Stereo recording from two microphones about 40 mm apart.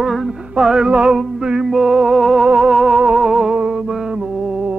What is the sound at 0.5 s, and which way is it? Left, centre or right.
Speech, centre.